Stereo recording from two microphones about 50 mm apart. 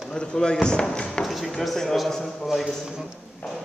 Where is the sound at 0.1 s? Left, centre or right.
Centre.